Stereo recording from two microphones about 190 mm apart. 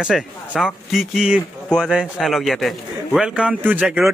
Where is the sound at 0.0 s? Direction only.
5° right (ahead or behind).